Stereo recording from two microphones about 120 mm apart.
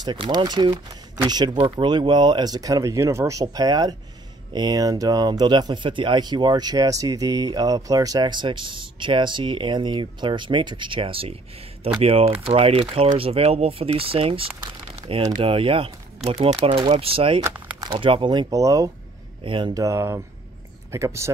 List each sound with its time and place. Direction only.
0.0 s speech: 40° right (ahead or behind)
18.5 s speech: 30° right (ahead or behind)
19.4 s speech: 45° right (ahead or behind)
19.7 s speech: 25° right (ahead or behind)